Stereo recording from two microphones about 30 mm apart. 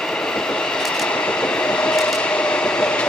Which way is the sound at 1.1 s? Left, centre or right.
Left.